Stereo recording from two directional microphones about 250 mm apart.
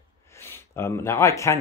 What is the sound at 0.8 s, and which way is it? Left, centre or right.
Speech, centre.